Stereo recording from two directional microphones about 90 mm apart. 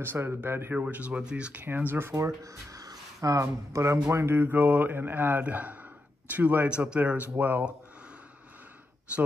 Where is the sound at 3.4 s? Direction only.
30° right (ahead or behind).